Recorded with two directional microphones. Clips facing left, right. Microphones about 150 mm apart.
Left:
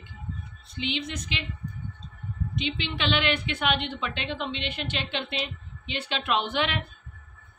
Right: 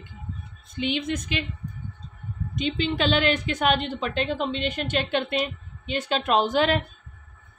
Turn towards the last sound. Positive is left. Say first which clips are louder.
# right 6 dB
turn(degrees=-40)  # may be behind; listen again after turning